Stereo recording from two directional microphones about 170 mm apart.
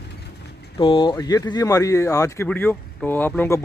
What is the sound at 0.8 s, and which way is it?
Speech, 30° left (ahead or behind).